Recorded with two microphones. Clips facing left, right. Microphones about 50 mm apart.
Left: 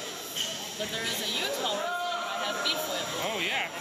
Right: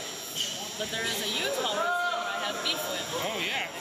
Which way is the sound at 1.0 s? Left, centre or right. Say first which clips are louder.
Right 2 dB; centre.